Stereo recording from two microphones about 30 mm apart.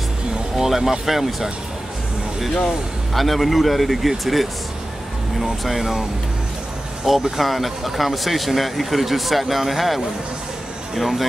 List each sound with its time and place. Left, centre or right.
0.6 s speech: centre
3.2 s speech: centre
7.3 s speech: centre